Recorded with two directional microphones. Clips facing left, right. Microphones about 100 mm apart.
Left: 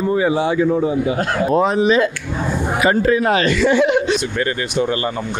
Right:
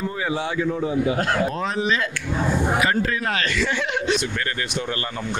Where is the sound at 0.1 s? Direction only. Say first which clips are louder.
Left 9 dB; 15° left (ahead or behind).